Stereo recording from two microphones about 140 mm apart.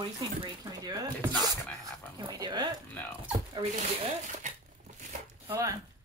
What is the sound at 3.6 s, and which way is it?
Speech, 40° right (ahead or behind).